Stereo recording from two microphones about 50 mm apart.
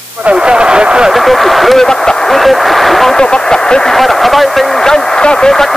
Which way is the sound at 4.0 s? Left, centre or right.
Centre.